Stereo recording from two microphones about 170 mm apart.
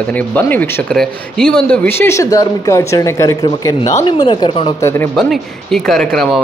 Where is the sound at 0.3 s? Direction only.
10° left (ahead or behind); by 4.7 s 30° left (ahead or behind).